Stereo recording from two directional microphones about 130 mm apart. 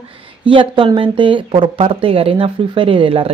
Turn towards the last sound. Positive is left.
turn(degrees=-45)  # may be behind; listen again after turning